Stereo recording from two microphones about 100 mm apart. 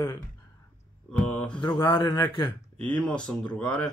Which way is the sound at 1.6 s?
55° left (ahead or behind).